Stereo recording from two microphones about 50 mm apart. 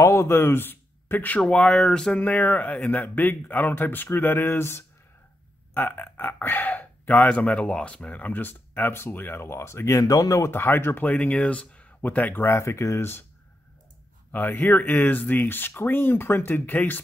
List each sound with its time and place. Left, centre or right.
0.0 s a sound: left
0.3 s speech: left
1.4 s speech: centre
2.1 s speech: left
5.8 s speech: left
10.5 s speech: left
11.0 s speech: left
12.4 s speech: left
14.3 s speech: left